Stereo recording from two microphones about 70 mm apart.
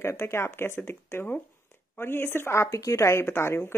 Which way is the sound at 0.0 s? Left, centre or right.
Left.